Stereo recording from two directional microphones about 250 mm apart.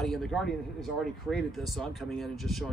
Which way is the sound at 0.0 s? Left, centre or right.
Centre.